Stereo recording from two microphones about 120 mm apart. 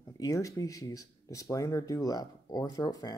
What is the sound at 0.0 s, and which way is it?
Speech, 30° left (ahead or behind).